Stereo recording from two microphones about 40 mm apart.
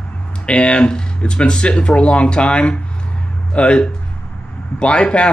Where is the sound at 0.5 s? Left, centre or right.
Left.